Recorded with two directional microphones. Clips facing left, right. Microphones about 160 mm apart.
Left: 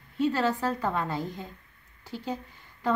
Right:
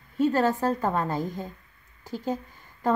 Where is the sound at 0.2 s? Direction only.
45° right (ahead or behind).